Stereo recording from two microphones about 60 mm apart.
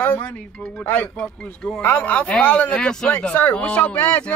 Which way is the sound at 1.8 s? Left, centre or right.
Left.